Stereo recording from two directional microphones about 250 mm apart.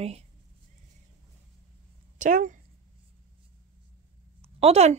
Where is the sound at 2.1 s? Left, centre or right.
Right.